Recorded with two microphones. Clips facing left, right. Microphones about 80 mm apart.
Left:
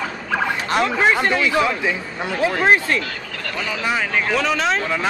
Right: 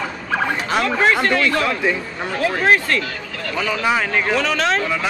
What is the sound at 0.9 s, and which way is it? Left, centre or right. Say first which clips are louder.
A man's voice: right 3 dB; centre.